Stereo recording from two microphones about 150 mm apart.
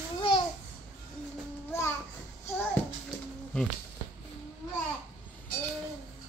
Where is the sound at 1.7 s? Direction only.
15° left (ahead or behind).